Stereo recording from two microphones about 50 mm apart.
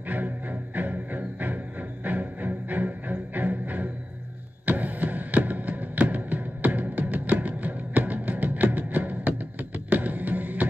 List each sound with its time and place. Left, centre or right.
0.1 s music: right